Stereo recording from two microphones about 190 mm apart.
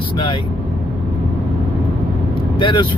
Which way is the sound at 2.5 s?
25° left (ahead or behind).